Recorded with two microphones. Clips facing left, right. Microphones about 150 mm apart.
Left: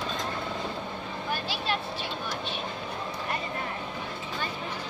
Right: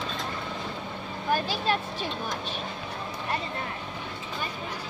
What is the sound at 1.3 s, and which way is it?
Vehicle, 45° right (ahead or behind).